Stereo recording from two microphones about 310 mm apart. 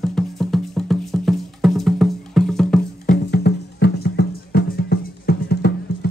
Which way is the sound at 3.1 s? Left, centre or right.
Left.